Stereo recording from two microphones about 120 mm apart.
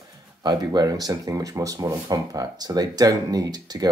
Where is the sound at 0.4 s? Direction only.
35° right (ahead or behind).